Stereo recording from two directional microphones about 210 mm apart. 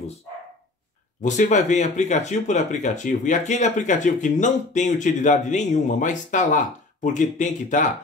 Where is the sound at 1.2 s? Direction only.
35° left (ahead or behind).